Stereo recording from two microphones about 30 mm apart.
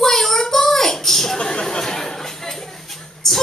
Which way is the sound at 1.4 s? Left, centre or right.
Left.